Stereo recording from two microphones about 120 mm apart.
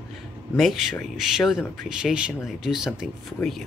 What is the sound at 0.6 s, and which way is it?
Speech, centre (ahead or behind).